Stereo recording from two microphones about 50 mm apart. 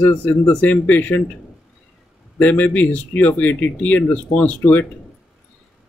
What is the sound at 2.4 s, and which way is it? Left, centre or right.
Speech, left.